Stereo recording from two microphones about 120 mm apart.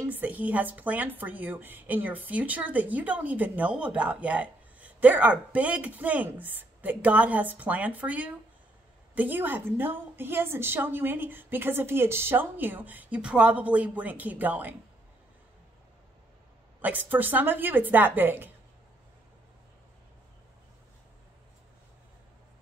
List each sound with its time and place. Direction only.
0.0 s speech: 15° right (ahead or behind)
16.8 s speech: 15° right (ahead or behind)